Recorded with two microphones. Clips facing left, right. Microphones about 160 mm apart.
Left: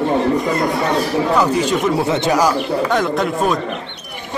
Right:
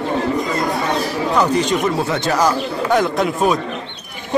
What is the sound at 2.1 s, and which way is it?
Speech, 20° left (ahead or behind).